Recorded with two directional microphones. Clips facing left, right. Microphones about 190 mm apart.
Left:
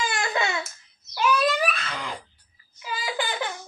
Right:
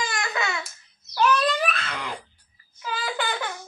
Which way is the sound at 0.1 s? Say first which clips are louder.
Left 2 dB; 30° left (ahead or behind).